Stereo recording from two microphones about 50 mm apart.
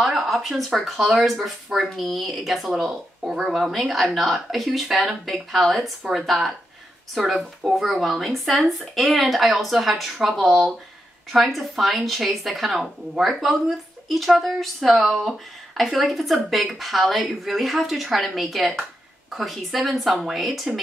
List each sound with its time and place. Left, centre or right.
0.0 s speech: centre